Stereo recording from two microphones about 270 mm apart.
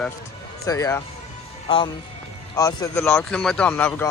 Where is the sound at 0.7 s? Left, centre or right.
Centre.